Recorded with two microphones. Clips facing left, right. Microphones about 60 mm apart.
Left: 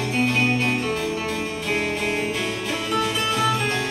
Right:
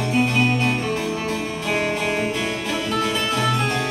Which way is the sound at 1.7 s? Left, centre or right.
Right.